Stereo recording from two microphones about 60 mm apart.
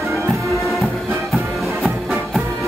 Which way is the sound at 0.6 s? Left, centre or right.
Centre.